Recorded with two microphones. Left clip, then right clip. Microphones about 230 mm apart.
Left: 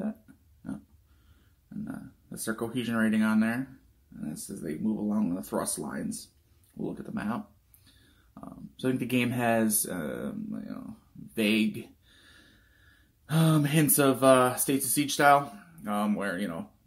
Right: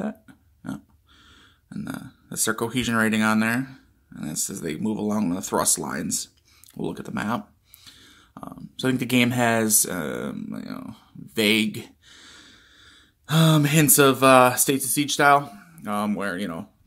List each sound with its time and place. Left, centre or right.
0.6 s pig: right
1.9 s speech: right
11.3 s a sound: right
13.3 s speech: right